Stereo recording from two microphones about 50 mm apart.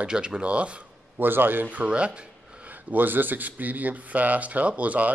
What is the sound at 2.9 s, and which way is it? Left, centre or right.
Speech, right.